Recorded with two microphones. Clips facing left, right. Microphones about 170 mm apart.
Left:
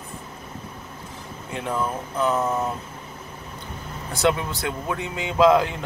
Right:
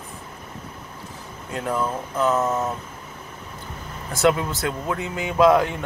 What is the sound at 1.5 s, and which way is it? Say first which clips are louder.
Speech: right 2 dB; 20° left (ahead or behind).